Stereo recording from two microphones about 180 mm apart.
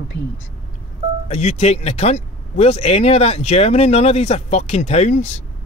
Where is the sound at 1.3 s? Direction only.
40° left (ahead or behind).